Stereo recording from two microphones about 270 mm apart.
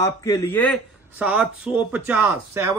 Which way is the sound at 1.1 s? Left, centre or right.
Centre.